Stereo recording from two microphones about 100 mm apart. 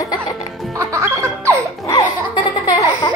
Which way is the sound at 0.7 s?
30° right (ahead or behind).